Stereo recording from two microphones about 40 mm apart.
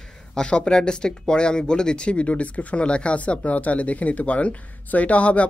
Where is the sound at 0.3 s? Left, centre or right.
Left.